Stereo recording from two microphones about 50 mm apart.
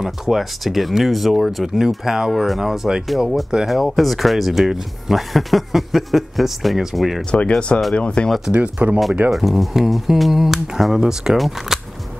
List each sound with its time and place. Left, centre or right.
0.0 s speech: centre
7.2 s speech: left
8.5 s speech: right
9.3 s speech: centre
11.3 s speech: centre